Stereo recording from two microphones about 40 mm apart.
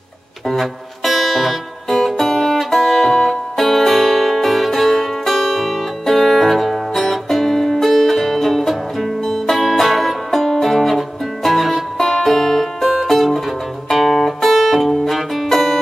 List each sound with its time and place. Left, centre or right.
0.5 s music: centre